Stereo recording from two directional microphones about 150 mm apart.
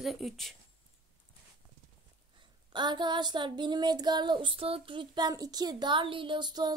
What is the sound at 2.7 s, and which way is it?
Child singing, 30° right (ahead or behind).